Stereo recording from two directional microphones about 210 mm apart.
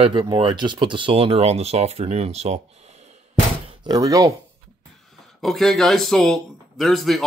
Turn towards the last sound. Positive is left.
turn(degrees=0)  # may be behind; listen again after turning